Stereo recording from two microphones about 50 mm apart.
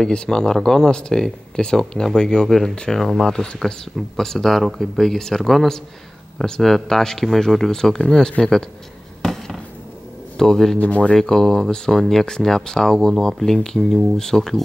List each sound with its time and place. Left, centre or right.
0.0 s speech: centre
3.0 s speech: centre
9.2 s fireworks: centre
10.3 s a man's voice: centre
10.8 s speech: left
11.1 s speech: centre